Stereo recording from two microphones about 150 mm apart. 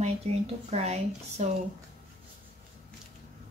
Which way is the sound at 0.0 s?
45° right (ahead or behind).